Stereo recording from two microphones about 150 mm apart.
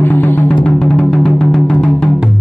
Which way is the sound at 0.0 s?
15° left (ahead or behind).